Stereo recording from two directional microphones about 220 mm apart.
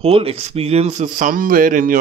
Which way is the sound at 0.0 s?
25° right (ahead or behind).